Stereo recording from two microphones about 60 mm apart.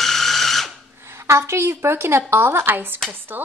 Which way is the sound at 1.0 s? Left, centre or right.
Right.